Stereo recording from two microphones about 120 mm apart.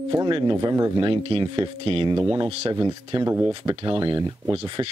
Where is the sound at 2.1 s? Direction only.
25° right (ahead or behind).